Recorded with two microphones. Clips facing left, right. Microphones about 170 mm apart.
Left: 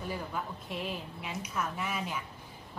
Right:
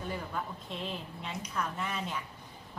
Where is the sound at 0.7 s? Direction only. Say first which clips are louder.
Left 3 dB; 5° left (ahead or behind).